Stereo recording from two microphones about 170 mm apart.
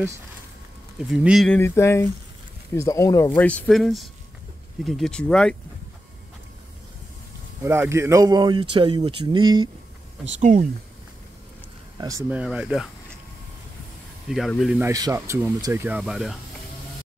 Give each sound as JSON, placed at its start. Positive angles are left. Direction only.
{"t": 0.9, "sound": "speech", "side_deg": -5}
{"t": 1.6, "sound": "speech", "side_deg": 15}
{"t": 7.9, "sound": "speech", "side_deg": -15}
{"t": 10.4, "sound": "speech", "side_deg": -45}
{"t": 12.0, "sound": "speech", "side_deg": -20}
{"t": 12.3, "sound": "speech", "side_deg": -5}
{"t": 14.3, "sound": "speech", "side_deg": 0}
{"t": 14.8, "sound": "speech", "side_deg": -20}
{"t": 16.0, "sound": "speech", "side_deg": 0}